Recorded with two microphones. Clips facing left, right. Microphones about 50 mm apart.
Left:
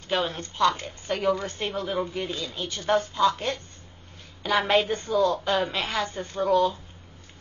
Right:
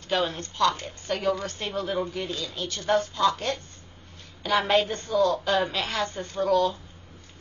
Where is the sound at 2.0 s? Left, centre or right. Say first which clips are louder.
Left 1 dB; centre.